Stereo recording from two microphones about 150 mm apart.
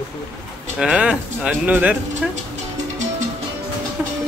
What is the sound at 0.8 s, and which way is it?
Speech, 5° right (ahead or behind).